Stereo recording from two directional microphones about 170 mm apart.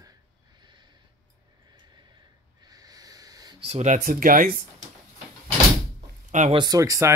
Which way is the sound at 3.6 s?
40° right (ahead or behind).